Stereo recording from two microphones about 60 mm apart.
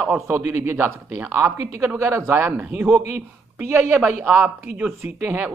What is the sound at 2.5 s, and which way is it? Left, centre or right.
Speech, right.